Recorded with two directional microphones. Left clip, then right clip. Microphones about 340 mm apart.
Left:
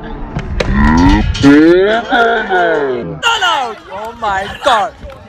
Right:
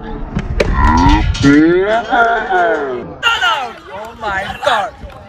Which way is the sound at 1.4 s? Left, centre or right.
Centre.